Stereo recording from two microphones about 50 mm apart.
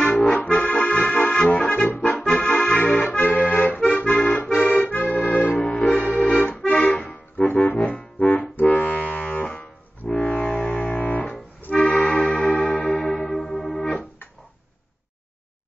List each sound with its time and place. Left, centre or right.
0.0 s accordion: left
1.9 s accordion: left
2.3 s accordion: centre
3.3 s accordion: left
4.6 s accordion: left
6.8 s music: left
11.7 s music: centre